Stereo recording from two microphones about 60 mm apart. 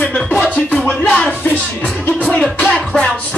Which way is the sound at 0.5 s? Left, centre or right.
Left.